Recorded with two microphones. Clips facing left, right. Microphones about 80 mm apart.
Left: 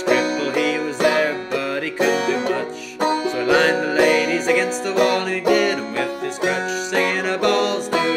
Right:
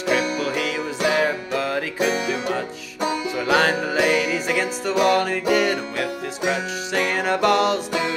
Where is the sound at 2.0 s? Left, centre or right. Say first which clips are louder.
Left 6 dB; left.